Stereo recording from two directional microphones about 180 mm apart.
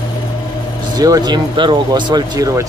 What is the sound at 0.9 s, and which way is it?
Speech, 20° right (ahead or behind).